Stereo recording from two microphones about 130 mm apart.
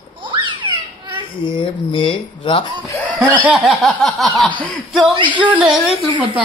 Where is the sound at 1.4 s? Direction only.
35° left (ahead or behind).